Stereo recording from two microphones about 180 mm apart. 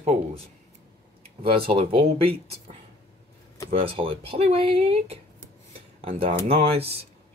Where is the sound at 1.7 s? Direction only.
35° right (ahead or behind).